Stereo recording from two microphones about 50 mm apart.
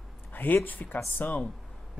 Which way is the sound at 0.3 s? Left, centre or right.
Left.